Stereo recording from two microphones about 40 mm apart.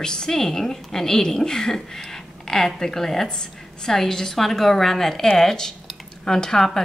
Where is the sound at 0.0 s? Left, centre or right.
Centre.